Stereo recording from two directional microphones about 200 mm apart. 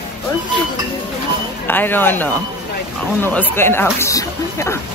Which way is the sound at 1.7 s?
10° left (ahead or behind).